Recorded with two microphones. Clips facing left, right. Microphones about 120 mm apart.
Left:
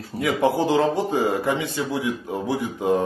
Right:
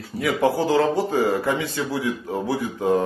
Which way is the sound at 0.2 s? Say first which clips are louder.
Even; 20° left (ahead or behind).